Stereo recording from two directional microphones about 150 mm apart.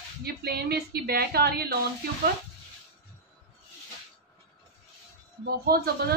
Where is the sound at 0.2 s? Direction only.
90° right.